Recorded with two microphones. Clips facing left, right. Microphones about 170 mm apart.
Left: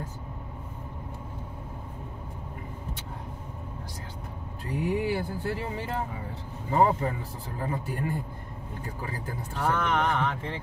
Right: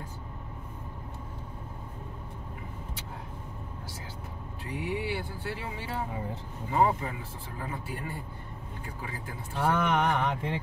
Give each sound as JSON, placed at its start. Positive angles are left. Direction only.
{"t": 4.8, "sound": "speech", "side_deg": 45}
{"t": 6.7, "sound": "speech", "side_deg": 40}
{"t": 9.6, "sound": "speech", "side_deg": -10}